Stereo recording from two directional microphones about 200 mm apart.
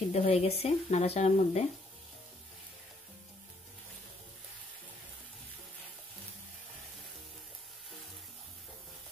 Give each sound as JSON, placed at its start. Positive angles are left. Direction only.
{"t": 0.1, "sound": "speech", "side_deg": 30}